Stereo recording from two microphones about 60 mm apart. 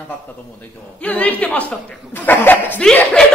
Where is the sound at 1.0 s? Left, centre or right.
Left.